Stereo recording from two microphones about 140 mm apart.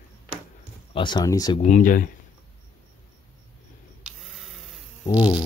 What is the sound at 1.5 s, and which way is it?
Speech, 60° left (ahead or behind).